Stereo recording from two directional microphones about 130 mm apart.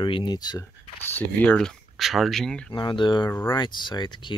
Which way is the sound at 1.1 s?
10° left (ahead or behind).